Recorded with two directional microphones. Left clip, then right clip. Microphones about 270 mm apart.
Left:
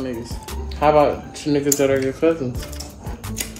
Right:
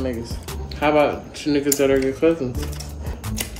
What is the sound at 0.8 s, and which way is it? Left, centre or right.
Speech, centre.